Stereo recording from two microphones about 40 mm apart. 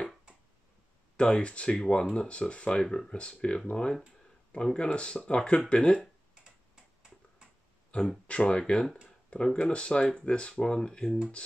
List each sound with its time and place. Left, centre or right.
1.1 s speech: left
6.3 s tick-tock: right
7.9 s speech: left